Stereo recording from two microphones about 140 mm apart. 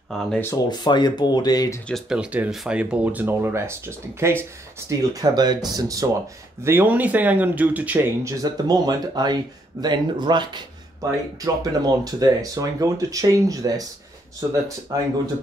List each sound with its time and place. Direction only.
0.3 s speech: 15° left (ahead or behind)
0.7 s speech: 30° left (ahead or behind)
1.9 s speech: centre (ahead or behind)
2.1 s speech: 10° right (ahead or behind); by 6.0 s 25° right (ahead or behind)
6.6 s speech: 15° right (ahead or behind)